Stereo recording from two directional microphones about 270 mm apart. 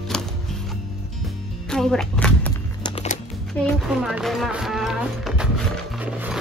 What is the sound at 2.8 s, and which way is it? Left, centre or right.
Music, left.